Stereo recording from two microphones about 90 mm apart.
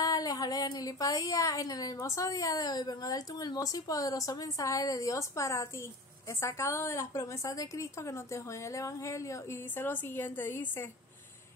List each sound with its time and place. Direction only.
0.0 s speech: 45° left (ahead or behind); by 10.9 s 25° left (ahead or behind)